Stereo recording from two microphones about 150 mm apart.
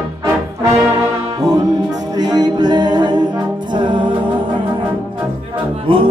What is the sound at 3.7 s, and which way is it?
Music, 30° right (ahead or behind).